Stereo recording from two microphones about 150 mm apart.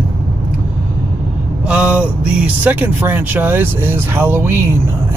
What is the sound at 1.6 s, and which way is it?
Speech, 10° right (ahead or behind).